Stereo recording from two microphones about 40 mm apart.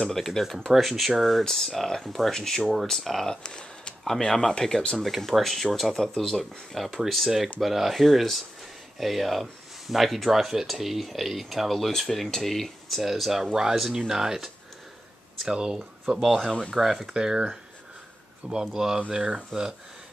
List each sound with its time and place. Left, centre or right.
0.2 s speech: centre
3.4 s a sound: left
4.2 s speech: centre
4.9 s speech: centre
7.9 s speech: centre
13.0 s speech: centre
18.7 s speech: centre
18.9 s speech: right